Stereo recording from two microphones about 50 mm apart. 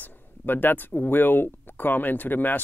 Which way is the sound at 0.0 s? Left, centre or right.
Left.